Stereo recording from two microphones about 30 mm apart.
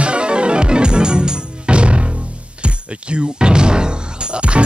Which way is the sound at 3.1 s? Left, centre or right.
Right.